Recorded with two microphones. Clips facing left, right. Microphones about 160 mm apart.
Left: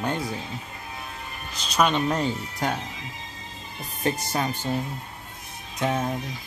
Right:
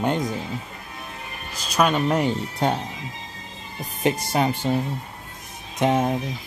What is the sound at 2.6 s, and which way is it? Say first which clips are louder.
Speech: right 5 dB; 30° right (ahead or behind).